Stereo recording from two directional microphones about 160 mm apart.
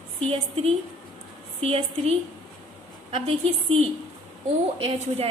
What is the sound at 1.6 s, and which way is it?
A woman's voice, 40° right (ahead or behind).